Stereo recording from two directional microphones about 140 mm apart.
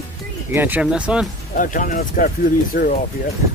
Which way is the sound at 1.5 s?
70° left (ahead or behind).